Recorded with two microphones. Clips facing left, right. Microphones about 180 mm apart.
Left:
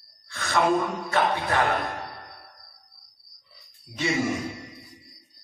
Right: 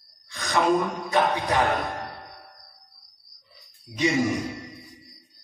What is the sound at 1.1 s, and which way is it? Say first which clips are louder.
Speech: right 2 dB; 15° right (ahead or behind).